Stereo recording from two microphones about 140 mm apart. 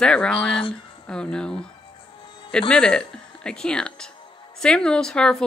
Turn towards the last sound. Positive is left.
turn(degrees=5)  # may be behind; listen again after turning